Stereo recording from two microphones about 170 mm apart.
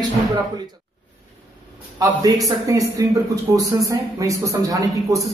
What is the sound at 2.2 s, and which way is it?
Speech, 20° right (ahead or behind).